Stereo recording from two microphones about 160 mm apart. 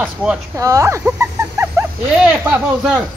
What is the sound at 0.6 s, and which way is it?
Speech, 20° right (ahead or behind).